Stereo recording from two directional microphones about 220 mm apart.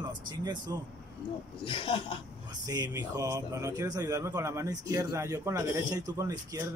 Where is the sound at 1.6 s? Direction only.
25° left (ahead or behind).